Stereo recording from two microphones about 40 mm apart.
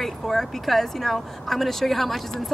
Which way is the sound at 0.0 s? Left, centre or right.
Centre.